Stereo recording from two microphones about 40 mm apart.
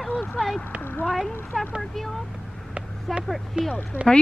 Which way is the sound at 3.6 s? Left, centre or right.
Right.